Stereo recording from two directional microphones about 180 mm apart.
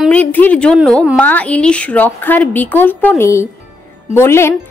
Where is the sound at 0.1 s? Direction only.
10° left (ahead or behind).